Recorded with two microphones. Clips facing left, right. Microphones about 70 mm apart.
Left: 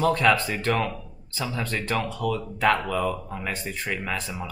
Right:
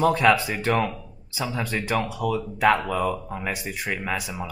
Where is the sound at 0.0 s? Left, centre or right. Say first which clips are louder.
Right 2 dB; centre.